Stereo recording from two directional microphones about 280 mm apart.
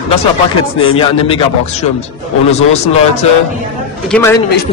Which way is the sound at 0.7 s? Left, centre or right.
Centre.